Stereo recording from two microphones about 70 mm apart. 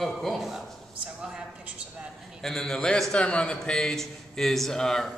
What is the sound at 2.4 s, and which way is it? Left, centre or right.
A man's voice, centre.